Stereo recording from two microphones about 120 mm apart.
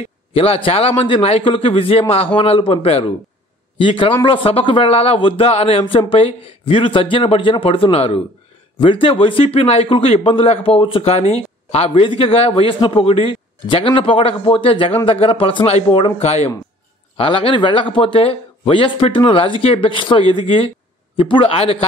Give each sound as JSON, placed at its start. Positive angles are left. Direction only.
{"t": 0.3, "sound": "speech", "side_deg": 50}
{"t": 3.7, "sound": "speech", "side_deg": 45}
{"t": 17.2, "sound": "speech", "side_deg": 45}